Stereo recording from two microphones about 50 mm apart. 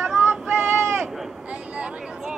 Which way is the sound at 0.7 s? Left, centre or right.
Right.